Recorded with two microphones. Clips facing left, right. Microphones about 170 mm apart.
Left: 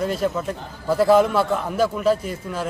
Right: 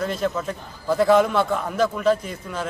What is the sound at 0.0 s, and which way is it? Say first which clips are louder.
A man's voice: left 2 dB; 5° left (ahead or behind).